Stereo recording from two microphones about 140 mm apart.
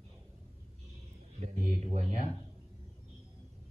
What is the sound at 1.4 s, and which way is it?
Speech, 55° right (ahead or behind).